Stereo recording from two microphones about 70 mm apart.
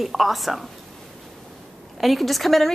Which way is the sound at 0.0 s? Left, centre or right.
Centre.